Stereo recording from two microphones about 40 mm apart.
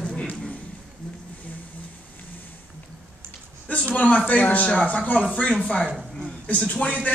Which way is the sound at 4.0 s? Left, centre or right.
Left.